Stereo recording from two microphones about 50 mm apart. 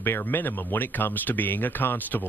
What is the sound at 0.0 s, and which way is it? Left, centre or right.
Speech, left.